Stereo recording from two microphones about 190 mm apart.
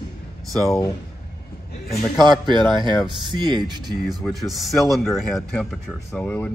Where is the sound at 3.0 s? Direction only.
25° right (ahead or behind).